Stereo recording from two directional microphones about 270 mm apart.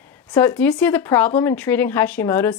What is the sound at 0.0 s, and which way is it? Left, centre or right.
Speech, centre.